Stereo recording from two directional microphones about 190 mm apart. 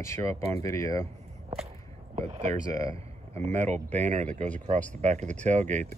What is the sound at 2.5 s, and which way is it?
Speech, 15° left (ahead or behind).